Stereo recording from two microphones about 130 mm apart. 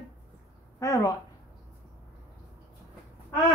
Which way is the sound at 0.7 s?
25° left (ahead or behind).